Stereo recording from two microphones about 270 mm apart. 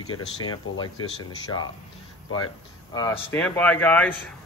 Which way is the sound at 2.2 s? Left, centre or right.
Left.